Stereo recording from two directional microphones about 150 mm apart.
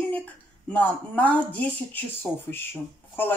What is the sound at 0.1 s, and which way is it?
Speech, 10° left (ahead or behind).